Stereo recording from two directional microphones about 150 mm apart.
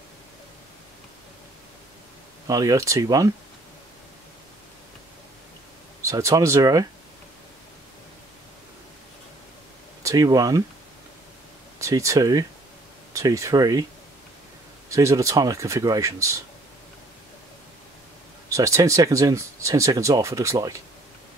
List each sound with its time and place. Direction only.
2.4 s speech: 25° right (ahead or behind)
6.0 s speech: 20° right (ahead or behind)
10.0 s speech: 25° right (ahead or behind)
11.8 s speech: 20° right (ahead or behind)
14.9 s speech: 20° right (ahead or behind)
18.5 s speech: 20° right (ahead or behind)